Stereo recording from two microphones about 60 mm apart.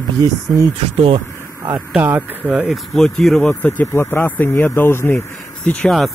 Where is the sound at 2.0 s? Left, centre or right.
Right.